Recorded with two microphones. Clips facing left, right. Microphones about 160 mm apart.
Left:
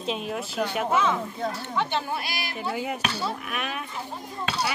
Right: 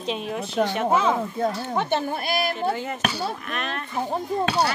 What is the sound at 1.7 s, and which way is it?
Speech, 45° right (ahead or behind).